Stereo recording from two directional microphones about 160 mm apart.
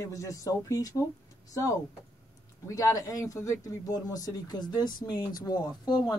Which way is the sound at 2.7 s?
20° left (ahead or behind).